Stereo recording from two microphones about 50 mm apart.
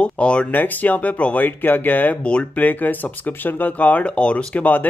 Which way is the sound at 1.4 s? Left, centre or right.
Left.